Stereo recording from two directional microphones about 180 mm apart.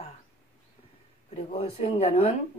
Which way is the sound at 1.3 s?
30° left (ahead or behind).